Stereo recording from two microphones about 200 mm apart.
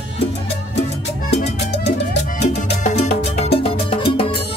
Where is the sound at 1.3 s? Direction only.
35° left (ahead or behind).